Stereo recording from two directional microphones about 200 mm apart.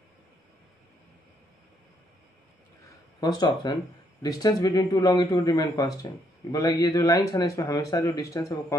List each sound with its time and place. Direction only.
3.2 s speech: 20° left (ahead or behind)